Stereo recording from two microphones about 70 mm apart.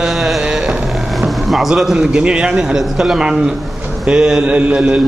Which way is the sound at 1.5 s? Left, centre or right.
Centre.